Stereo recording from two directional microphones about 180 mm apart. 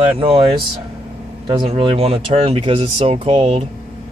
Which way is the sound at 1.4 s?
30° right (ahead or behind).